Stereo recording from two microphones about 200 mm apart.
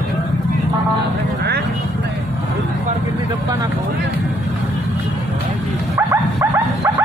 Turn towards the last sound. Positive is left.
turn(degrees=-15)  # may be behind; listen again after turning